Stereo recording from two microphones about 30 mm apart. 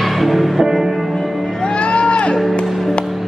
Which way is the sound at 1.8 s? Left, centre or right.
Left.